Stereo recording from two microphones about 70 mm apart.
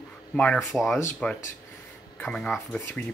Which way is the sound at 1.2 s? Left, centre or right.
Centre.